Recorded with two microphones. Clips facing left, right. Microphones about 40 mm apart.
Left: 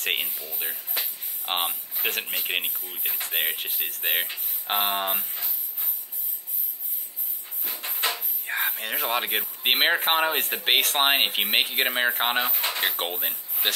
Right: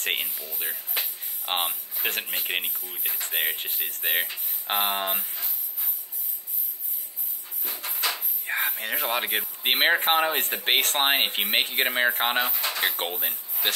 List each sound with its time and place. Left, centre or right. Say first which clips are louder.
0.0 s speech: left 1 dB; centre
2.6 s speech: left 1 dB; centre
7.6 s a sound: left 1 dB; left
8.1 s speech: even; centre
12.6 s drawer open or close: even; left
12.9 s speech: left 1 dB; centre